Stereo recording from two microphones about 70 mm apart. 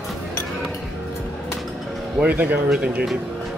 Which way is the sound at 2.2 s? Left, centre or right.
Right.